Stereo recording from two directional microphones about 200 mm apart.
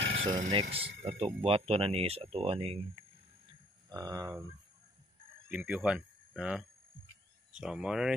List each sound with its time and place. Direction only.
0.2 s speech: 35° right (ahead or behind)
3.9 s speech: 20° right (ahead or behind)
5.5 s speech: 10° right (ahead or behind)